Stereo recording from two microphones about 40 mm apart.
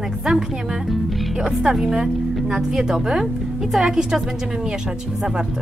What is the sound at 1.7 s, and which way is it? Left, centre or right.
Speech, centre.